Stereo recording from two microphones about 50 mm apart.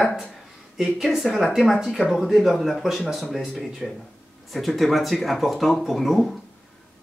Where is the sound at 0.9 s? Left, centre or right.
Centre.